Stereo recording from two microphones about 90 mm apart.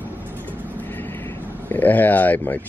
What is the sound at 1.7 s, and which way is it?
Speech, 20° left (ahead or behind).